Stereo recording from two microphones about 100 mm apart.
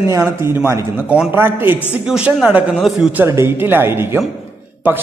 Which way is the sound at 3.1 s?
25° right (ahead or behind).